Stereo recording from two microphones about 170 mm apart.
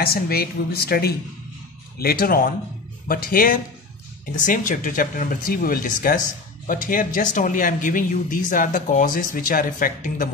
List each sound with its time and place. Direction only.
0.0 s speech: 60° left (ahead or behind)